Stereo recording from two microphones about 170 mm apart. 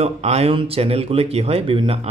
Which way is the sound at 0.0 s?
40° right (ahead or behind).